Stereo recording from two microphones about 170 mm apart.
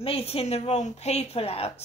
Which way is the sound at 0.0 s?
35° left (ahead or behind).